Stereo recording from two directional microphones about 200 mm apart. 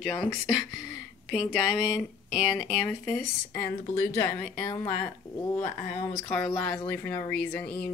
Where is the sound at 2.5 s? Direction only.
5° left (ahead or behind).